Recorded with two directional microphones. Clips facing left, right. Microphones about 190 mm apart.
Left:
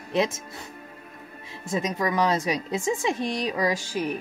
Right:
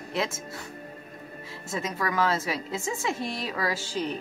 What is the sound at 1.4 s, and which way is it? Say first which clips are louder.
A woman's voice: left 5 dB; 20° left (ahead or behind).